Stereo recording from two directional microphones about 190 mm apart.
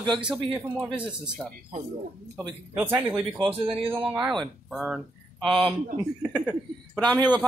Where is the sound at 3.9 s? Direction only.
5° right (ahead or behind).